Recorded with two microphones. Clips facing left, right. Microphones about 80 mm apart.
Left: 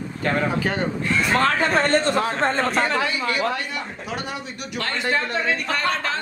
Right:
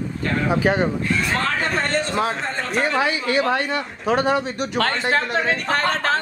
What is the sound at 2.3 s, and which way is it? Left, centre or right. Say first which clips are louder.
Speech: left 5 dB; left.